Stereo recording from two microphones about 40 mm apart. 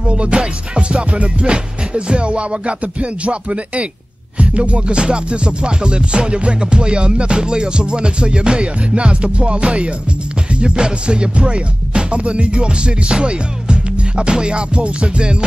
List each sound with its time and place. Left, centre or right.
0.0 s music: right